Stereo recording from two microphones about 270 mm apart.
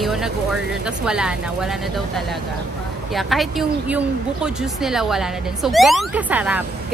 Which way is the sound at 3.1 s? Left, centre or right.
Centre.